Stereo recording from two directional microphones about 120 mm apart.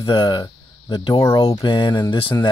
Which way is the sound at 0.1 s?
40° left (ahead or behind).